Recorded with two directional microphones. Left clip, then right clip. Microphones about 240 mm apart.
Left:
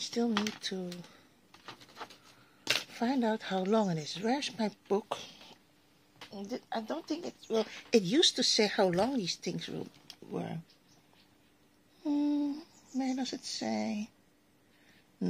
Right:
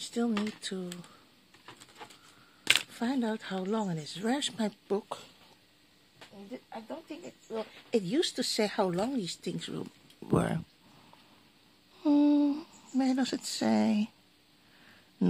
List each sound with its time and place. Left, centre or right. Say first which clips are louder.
0.0 s speech: left 1 dB; centre
2.6 s speech: right 4 dB; centre
4.9 s speech: left 3 dB; centre
6.3 s speech: left 6 dB; left
7.9 s speech: left 3 dB; centre
10.3 s speech: right 10 dB; right
12.0 s humming: right 6 dB; right
12.9 s speech: right 5 dB; right